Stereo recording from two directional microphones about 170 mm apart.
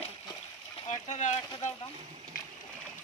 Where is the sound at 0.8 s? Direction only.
45° left (ahead or behind).